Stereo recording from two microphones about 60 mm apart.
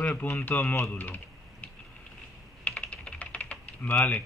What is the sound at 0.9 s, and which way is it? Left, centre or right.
Speech, left.